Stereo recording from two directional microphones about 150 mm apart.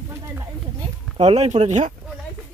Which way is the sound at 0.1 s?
15° right (ahead or behind).